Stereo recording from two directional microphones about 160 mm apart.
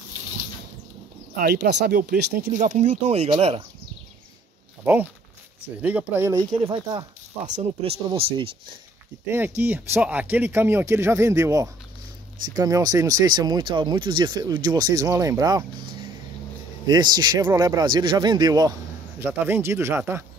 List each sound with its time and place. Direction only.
1.4 s speech: 90° right; by 2.5 s 70° right (ahead or behind)
2.5 s speech: 50° right (ahead or behind)
4.9 s speech: 10° right (ahead or behind)
6.5 s speech: 30° right (ahead or behind)
7.4 s speech: 45° right (ahead or behind)
9.6 s speech: 10° right (ahead or behind)
16.8 s speech: 25° right (ahead or behind)